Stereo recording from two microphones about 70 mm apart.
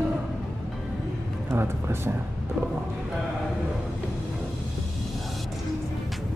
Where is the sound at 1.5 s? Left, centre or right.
Right.